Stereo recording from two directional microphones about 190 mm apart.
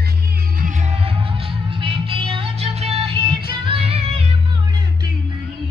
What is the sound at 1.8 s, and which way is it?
Music, 25° right (ahead or behind).